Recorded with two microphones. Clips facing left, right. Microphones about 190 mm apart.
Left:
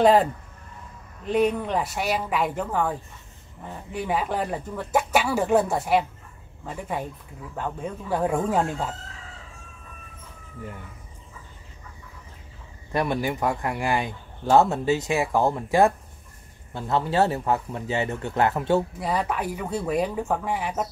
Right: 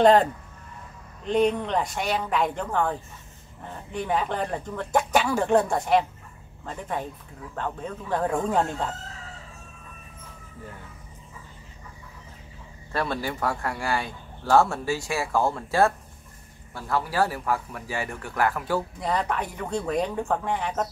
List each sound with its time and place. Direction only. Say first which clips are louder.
0.0 s speech: even; 5° left (ahead or behind)
12.9 s speech: left 3 dB; 15° left (ahead or behind)
18.9 s speech: left 1 dB; 5° left (ahead or behind)